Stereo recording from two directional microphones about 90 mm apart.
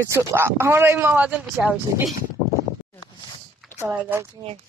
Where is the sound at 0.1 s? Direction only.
30° right (ahead or behind).